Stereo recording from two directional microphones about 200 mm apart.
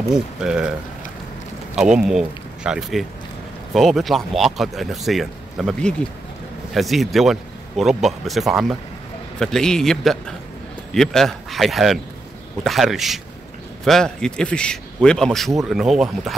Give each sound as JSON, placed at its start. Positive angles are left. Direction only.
{"t": 0.1, "sound": "speech", "side_deg": -5}
{"t": 1.8, "sound": "speech", "side_deg": -5}